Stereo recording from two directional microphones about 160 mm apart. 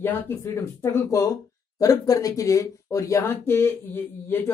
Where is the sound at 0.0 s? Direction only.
15° left (ahead or behind).